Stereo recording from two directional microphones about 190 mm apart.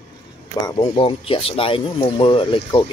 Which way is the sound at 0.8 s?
30° left (ahead or behind).